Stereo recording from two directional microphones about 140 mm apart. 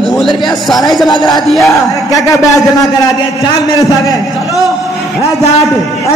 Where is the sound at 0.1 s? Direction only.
Centre (ahead or behind).